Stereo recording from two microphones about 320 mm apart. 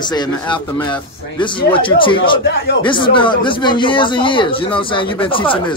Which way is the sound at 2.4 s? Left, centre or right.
Left.